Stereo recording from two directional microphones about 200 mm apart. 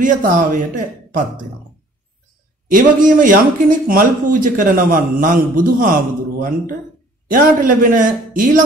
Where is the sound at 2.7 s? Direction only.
40° right (ahead or behind).